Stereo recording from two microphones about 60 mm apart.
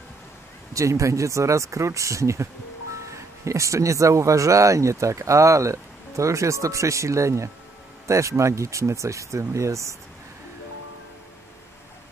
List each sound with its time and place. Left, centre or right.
0.7 s speech: right